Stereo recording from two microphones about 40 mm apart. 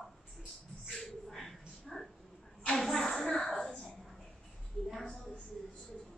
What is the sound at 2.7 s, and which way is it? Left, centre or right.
A woman's voice, centre.